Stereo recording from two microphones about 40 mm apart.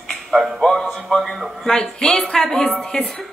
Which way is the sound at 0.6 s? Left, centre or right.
Centre.